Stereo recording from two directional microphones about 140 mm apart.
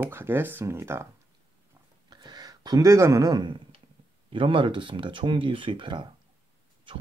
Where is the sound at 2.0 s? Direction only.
30° right (ahead or behind).